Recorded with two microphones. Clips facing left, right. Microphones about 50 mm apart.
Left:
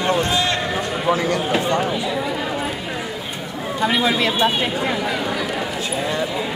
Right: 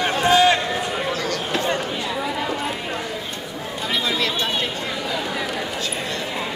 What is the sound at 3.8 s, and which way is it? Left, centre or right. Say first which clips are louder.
Speech: left 5 dB; centre.